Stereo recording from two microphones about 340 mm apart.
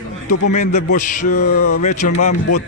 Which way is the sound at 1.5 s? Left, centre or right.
Left.